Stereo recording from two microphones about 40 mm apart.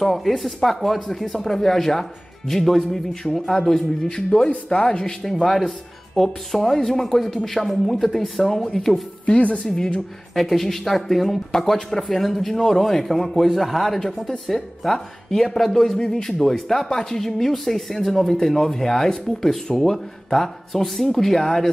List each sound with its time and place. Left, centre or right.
0.0 s speech: centre
4.6 s speech: left
5.0 s speech: centre
9.2 s speech: left
10.3 s speech: centre